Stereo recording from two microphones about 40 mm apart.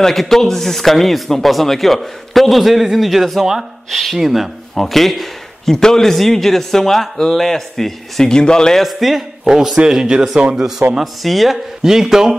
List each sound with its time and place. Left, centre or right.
0.0 s speech: centre
8.7 s speech: centre
9.4 s a man's voice: centre
11.0 s speech: centre
11.8 s speech: centre